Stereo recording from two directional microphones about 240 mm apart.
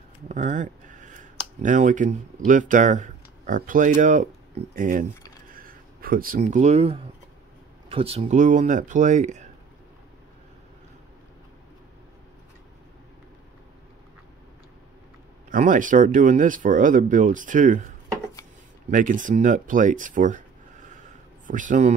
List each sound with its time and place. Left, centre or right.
0.3 s speech: right
15.5 s speech: right
21.5 s speech: right